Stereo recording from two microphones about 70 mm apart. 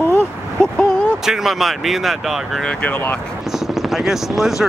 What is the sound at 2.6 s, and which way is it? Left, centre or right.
Speech, centre.